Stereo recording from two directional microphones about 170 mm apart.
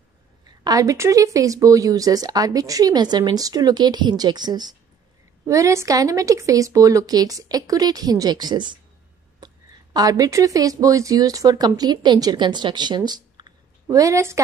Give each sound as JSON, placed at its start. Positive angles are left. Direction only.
{"t": 0.7, "sound": "speech", "side_deg": -20}
{"t": 9.4, "sound": "a sound", "side_deg": -25}
{"t": 9.9, "sound": "speech", "side_deg": -20}